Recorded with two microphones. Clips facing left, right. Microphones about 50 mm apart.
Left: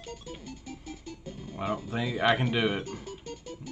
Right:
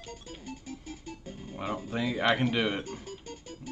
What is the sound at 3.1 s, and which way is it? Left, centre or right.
Music, right.